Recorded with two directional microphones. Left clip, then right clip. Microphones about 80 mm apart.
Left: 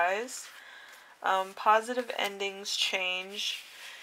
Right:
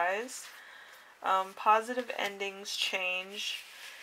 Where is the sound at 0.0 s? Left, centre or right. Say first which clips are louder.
Left 3 dB; left.